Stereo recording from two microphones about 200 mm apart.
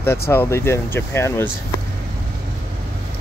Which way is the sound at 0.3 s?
10° left (ahead or behind).